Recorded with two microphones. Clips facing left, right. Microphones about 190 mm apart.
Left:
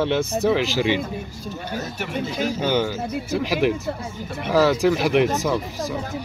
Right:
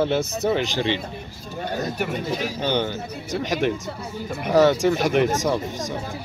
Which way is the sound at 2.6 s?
10° left (ahead or behind).